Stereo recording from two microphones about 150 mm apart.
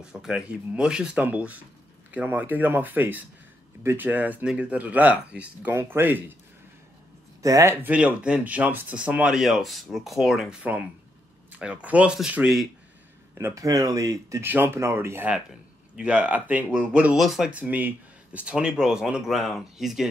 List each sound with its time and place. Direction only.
0.0 s speech: 5° right (ahead or behind)
7.4 s speech: 20° right (ahead or behind)
13.3 s speech: 20° right (ahead or behind); by 20.1 s centre (ahead or behind)